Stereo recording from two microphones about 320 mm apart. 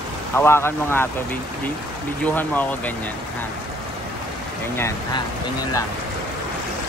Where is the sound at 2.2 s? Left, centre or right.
Centre.